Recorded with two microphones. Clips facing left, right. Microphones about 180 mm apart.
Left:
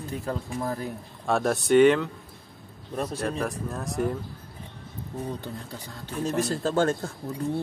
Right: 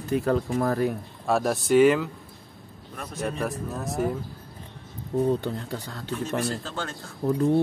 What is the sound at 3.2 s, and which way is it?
Mantra, 5° right (ahead or behind).